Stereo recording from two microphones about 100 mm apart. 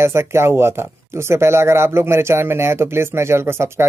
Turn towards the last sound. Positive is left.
turn(degrees=-25)  # may be behind; listen again after turning